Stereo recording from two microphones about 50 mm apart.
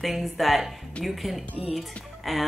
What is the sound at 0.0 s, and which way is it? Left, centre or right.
A woman's voice, centre.